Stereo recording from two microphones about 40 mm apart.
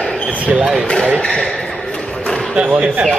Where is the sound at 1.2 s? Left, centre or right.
Left.